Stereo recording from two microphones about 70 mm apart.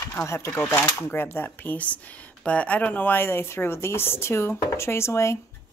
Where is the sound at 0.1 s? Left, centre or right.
Left.